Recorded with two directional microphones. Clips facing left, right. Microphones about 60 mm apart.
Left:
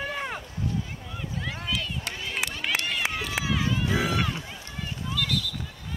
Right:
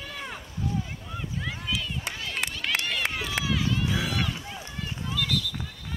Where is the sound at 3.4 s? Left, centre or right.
Left.